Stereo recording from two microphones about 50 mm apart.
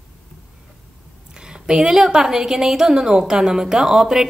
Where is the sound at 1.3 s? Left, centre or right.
Centre.